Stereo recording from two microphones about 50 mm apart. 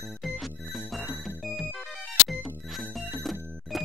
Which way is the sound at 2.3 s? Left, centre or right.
Centre.